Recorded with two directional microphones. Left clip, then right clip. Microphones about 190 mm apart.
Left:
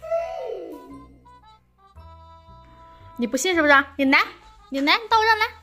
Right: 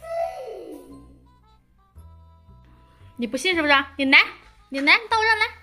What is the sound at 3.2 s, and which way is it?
A woman's voice, 10° left (ahead or behind).